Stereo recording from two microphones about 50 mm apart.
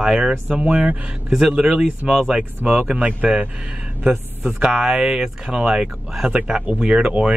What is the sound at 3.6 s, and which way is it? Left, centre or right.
A man's voice, right.